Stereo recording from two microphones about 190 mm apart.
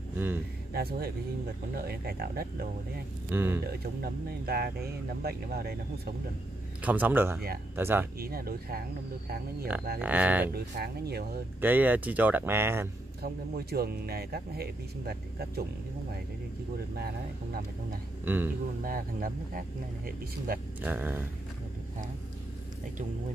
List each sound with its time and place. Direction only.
0.7 s speech: 55° right (ahead or behind)
3.3 s speech: 10° right (ahead or behind)
3.6 s speech: 55° right (ahead or behind)
6.8 s speech: 10° right (ahead or behind)
8.2 s speech: 50° right (ahead or behind)
9.7 s speech: 10° right (ahead or behind)
10.5 s speech: 55° right (ahead or behind)
11.6 s speech: 10° right (ahead or behind)
13.2 s speech: 55° right (ahead or behind)
18.2 s a man's voice: 10° right (ahead or behind)
18.9 s speech: 50° right (ahead or behind)
20.8 s speech: 10° right (ahead or behind)